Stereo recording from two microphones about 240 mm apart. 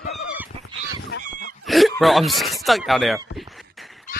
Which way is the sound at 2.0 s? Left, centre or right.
Centre.